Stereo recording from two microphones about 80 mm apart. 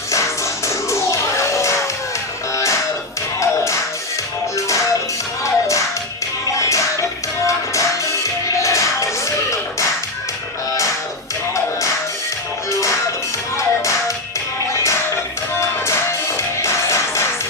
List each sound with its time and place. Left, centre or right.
0.1 s music: left
13.6 s music: left
15.5 s music: left